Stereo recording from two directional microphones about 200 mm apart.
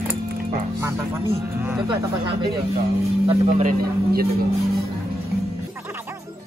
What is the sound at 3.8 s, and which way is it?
Speech, 50° right (ahead or behind).